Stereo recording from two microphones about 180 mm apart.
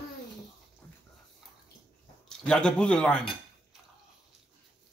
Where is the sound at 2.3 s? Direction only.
5° left (ahead or behind).